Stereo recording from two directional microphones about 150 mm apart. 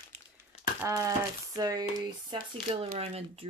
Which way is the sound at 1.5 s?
25° right (ahead or behind).